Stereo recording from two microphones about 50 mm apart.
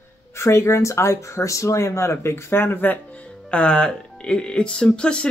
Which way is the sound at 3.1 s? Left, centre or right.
Left.